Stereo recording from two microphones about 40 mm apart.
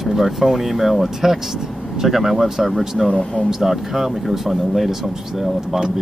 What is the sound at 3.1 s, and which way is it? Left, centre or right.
Speech, left.